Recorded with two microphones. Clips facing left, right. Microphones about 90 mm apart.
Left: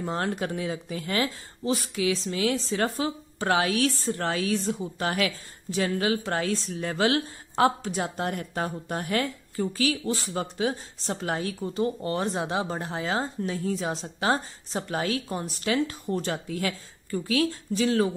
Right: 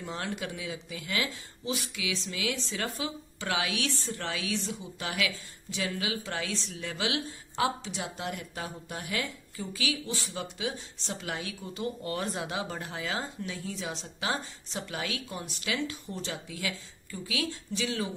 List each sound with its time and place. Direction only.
0.0 s speech: 40° left (ahead or behind)